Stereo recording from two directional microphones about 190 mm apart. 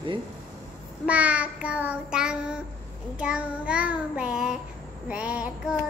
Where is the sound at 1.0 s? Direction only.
5° right (ahead or behind).